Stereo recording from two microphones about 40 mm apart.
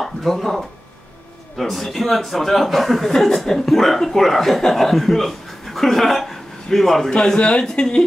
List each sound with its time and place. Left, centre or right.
0.0 s speech: centre
7.1 s a man's voice: centre
7.3 s speech: left